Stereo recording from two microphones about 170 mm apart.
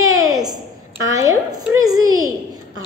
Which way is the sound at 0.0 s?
20° right (ahead or behind).